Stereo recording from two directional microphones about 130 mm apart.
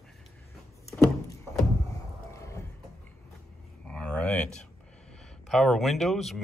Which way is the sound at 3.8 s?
10° left (ahead or behind).